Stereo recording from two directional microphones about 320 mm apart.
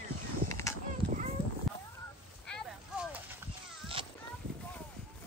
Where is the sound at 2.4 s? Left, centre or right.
Centre.